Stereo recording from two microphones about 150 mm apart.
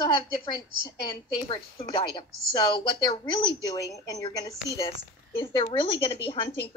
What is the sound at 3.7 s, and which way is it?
A woman's voice, 20° left (ahead or behind).